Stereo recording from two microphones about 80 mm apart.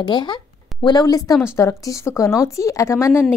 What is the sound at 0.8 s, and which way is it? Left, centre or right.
Speech, left.